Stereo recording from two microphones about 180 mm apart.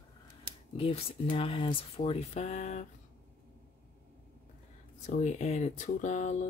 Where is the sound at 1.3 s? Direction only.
30° left (ahead or behind).